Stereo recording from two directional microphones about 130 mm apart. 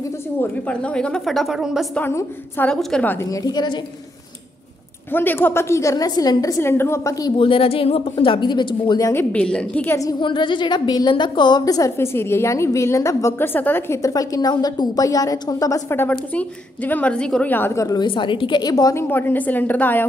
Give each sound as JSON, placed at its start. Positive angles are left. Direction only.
{"t": 0.4, "sound": "a woman's voice", "side_deg": 10}
{"t": 2.0, "sound": "a woman's voice", "side_deg": 15}
{"t": 2.7, "sound": "a woman's voice", "side_deg": 5}
{"t": 3.3, "sound": "a woman's voice", "side_deg": 30}
{"t": 5.1, "sound": "a woman's voice", "side_deg": 15}
{"t": 7.3, "sound": "a woman's voice", "side_deg": 45}
{"t": 9.1, "sound": "a woman's voice", "side_deg": 15}
{"t": 9.8, "sound": "a woman's voice", "side_deg": 25}
{"t": 17.8, "sound": "a woman's voice", "side_deg": 35}
{"t": 19.0, "sound": "a woman's voice", "side_deg": 15}